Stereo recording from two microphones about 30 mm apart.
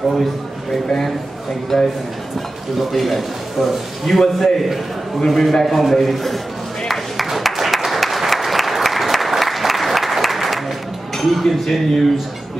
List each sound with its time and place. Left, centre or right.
0.0 s a man's voice: centre
1.7 s speech: centre
2.9 s a man's voice: centre
7.2 s applause: centre
11.1 s speech: centre